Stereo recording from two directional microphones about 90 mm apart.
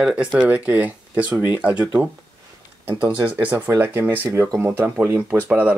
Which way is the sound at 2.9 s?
50° right (ahead or behind).